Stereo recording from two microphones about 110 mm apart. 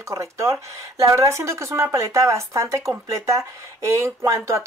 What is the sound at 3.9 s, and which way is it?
Speech, 25° right (ahead or behind).